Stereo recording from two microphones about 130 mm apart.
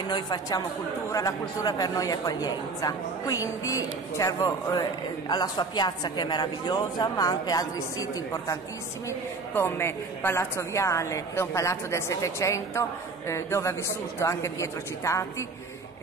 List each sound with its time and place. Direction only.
0.1 s a woman's voice: 30° left (ahead or behind)